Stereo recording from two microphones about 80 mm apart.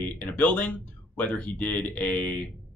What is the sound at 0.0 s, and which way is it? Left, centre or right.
Speech, centre.